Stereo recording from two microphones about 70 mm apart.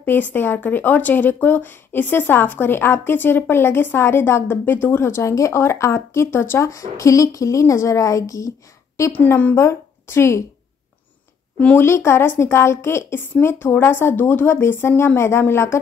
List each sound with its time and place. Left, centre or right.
0.0 s speech: left
6.7 s a woman's voice: left
11.7 s speech: left